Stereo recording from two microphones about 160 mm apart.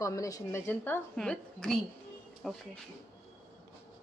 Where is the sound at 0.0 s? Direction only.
20° left (ahead or behind); by 2.6 s centre (ahead or behind).